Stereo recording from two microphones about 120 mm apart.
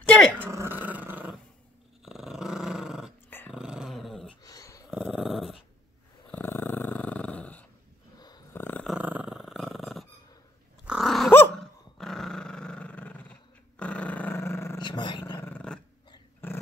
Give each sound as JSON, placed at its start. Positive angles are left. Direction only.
{"t": 0.4, "sound": "dog", "side_deg": -20}
{"t": 3.3, "sound": "dog", "side_deg": 15}
{"t": 3.5, "sound": "dog", "side_deg": -5}
{"t": 4.4, "sound": "dog", "side_deg": 30}
{"t": 4.9, "sound": "dog", "side_deg": 0}
{"t": 6.3, "sound": "dog", "side_deg": 15}
{"t": 8.8, "sound": "dog", "side_deg": -10}
{"t": 11.2, "sound": "dog", "side_deg": 20}
{"t": 11.5, "sound": "dog", "side_deg": 5}
{"t": 14.8, "sound": "a sound", "side_deg": 40}
{"t": 15.3, "sound": "dog", "side_deg": 15}